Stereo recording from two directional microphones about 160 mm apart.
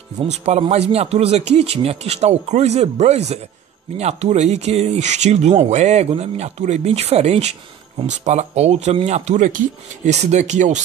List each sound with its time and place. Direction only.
0.2 s speech: 40° right (ahead or behind)